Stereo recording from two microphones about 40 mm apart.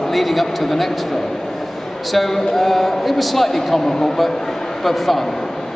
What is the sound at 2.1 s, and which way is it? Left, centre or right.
A man's voice, centre.